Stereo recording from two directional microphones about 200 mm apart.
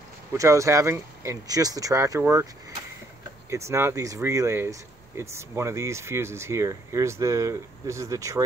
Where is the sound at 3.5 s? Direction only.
15° right (ahead or behind).